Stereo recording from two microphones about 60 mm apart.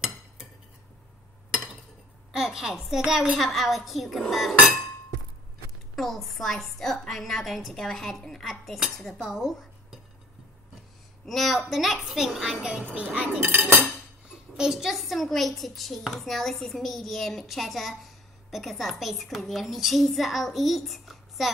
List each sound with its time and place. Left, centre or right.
2.3 s speech: centre
5.9 s speech: centre
11.2 s speech: centre
12.6 s a child's voice: centre
13.5 s cutlery: right
14.6 s speech: centre